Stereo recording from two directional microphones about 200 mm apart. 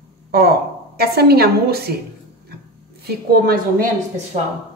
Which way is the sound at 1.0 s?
50° right (ahead or behind).